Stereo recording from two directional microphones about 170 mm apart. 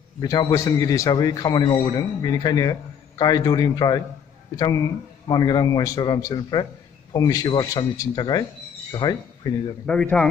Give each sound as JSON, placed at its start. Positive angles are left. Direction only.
{"t": 0.2, "sound": "a man's voice", "side_deg": 25}
{"t": 9.8, "sound": "speech", "side_deg": 5}